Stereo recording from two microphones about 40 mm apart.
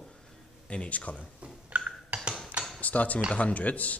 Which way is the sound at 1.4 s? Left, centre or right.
Right.